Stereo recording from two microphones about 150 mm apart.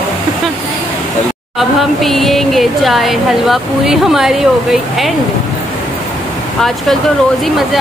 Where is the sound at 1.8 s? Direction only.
Centre (ahead or behind).